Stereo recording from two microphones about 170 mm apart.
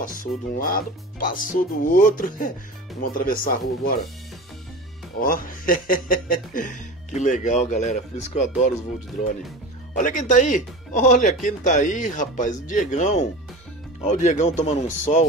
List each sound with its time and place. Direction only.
0.0 s speech: 55° left (ahead or behind)
5.2 s speech: 55° left (ahead or behind)
9.9 s speech: 45° left (ahead or behind)